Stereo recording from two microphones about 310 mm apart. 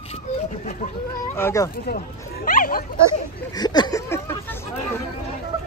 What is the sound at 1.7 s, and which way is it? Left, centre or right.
Speech, left.